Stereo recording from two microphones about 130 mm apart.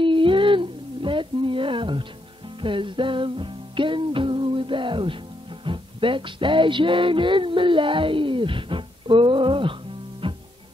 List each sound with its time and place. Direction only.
0.0 s humming: 40° right (ahead or behind)
2.6 s music: 40° right (ahead or behind)